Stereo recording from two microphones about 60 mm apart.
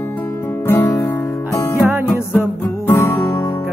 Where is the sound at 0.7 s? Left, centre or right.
Left.